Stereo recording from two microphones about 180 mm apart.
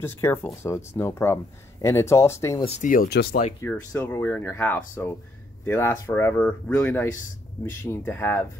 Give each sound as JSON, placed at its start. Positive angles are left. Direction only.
{"t": 0.0, "sound": "speech", "side_deg": 15}
{"t": 2.8, "sound": "speech", "side_deg": 50}
{"t": 3.1, "sound": "speech", "side_deg": 70}
{"t": 3.6, "sound": "speech", "side_deg": 15}